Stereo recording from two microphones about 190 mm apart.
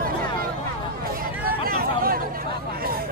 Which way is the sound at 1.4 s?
50° right (ahead or behind).